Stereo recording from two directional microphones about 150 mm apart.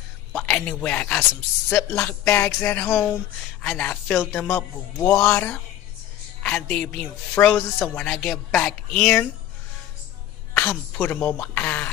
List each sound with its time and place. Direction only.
0.3 s speech: 5° left (ahead or behind)
2.0 s speech: 15° left (ahead or behind)
10.5 s speech: 10° left (ahead or behind)